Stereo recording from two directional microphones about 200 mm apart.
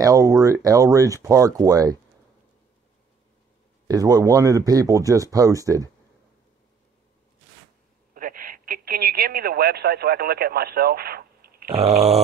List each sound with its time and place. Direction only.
0.0 s speech: 15° right (ahead or behind)
3.8 s speech: 20° right (ahead or behind)
8.1 s speech: 45° right (ahead or behind)
11.7 s a sound: 30° right (ahead or behind)